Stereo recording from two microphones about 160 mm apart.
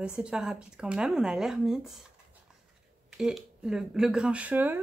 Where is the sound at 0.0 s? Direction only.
5° right (ahead or behind).